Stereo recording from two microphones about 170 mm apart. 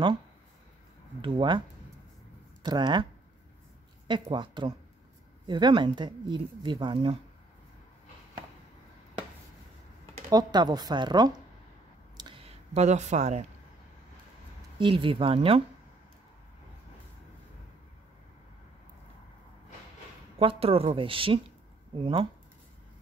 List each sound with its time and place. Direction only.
1.2 s speech: 25° right (ahead or behind)
2.6 s speech: 25° right (ahead or behind)
4.1 s speech: 30° right (ahead or behind)
10.3 s speech: 25° right (ahead or behind)
12.2 s a sound: 30° right (ahead or behind)
14.8 s speech: 30° right (ahead or behind)
20.3 s speech: 35° right (ahead or behind)